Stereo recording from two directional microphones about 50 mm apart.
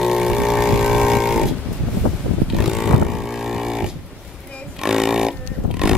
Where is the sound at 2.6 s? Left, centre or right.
Centre.